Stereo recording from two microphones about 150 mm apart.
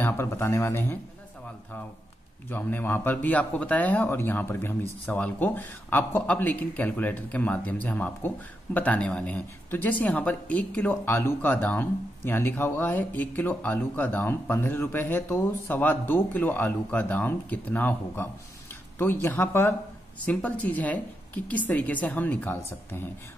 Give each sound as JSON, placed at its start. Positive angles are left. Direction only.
{"t": 0.0, "sound": "speech", "side_deg": 15}
{"t": 2.5, "sound": "speech", "side_deg": 15}